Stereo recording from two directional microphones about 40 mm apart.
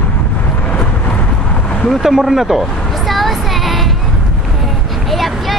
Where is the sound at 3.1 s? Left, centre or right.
Centre.